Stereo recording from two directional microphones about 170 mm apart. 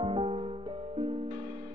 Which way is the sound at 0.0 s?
30° right (ahead or behind).